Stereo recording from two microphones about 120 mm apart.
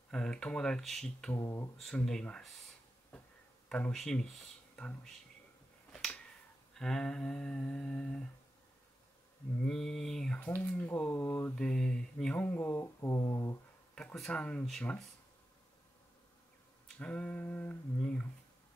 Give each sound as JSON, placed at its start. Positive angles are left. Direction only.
{"t": 0.1, "sound": "mantra", "side_deg": 10}
{"t": 1.4, "sound": "speech", "side_deg": 25}
{"t": 1.8, "sound": "speech", "side_deg": 5}
{"t": 3.6, "sound": "speech", "side_deg": 5}
{"t": 5.9, "sound": "a sound", "side_deg": 5}
{"t": 6.7, "sound": "mantra", "side_deg": 5}
{"t": 9.7, "sound": "speech", "side_deg": 5}
{"t": 10.9, "sound": "mantra", "side_deg": 20}
{"t": 11.5, "sound": "mantra", "side_deg": 5}
{"t": 13.9, "sound": "mantra", "side_deg": 5}
{"t": 16.8, "sound": "mantra", "side_deg": 10}